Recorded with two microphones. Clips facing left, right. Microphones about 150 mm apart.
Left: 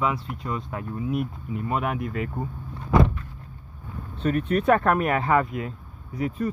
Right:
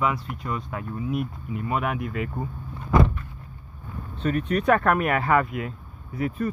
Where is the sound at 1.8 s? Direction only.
40° left (ahead or behind).